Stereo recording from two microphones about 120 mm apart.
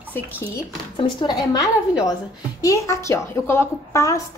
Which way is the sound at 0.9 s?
40° left (ahead or behind).